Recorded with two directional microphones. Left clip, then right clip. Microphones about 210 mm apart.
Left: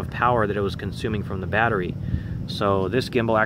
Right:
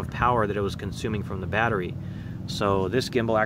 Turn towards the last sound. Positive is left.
turn(degrees=0)  # may be behind; listen again after turning